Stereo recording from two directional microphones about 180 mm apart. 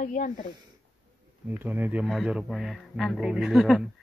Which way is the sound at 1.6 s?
10° right (ahead or behind).